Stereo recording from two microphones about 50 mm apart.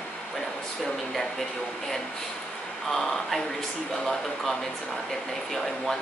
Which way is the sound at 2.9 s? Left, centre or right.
Centre.